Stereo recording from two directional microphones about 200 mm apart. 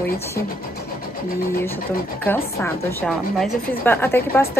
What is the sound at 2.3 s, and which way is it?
A woman's voice, 5° left (ahead or behind).